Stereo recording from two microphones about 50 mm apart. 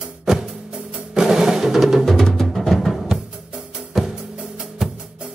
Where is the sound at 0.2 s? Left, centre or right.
Centre.